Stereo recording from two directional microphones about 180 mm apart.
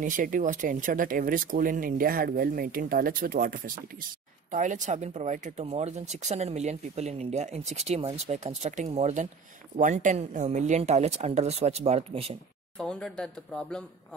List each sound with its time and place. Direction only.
0.0 s speech: 50° right (ahead or behind)
12.7 s speech: 5° left (ahead or behind)